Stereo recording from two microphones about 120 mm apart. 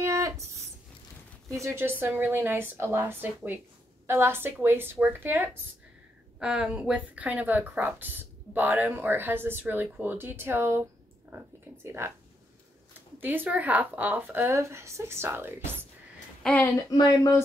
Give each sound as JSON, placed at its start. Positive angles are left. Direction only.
{"t": 0.0, "sound": "a sound", "side_deg": -25}
{"t": 1.6, "sound": "speech", "side_deg": -20}
{"t": 13.2, "sound": "speech", "side_deg": -15}
{"t": 16.6, "sound": "speech", "side_deg": 30}